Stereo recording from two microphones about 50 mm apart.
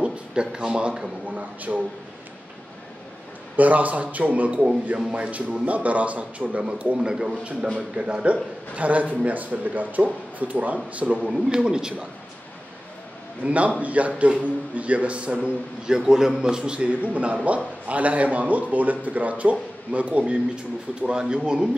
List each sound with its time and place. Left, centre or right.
0.0 s speech: centre
1.3 s a man's voice: right
3.5 s a man's voice: right
7.0 s a man's voice: centre
11.2 s speech: centre
13.4 s a man's voice: right
16.1 s a man's voice: centre